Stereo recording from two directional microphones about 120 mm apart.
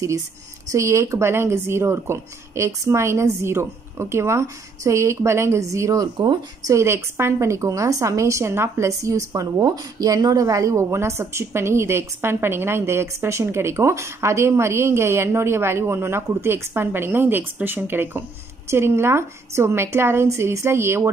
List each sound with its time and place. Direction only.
0.7 s a woman's voice: 25° right (ahead or behind)
6.7 s a woman's voice: 20° right (ahead or behind)